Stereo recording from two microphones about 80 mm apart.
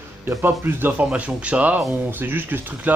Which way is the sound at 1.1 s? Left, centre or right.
Centre.